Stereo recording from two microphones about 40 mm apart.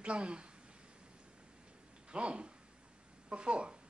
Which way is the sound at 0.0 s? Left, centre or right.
Right.